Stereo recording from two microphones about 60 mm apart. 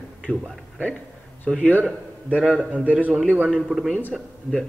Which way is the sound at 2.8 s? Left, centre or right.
Right.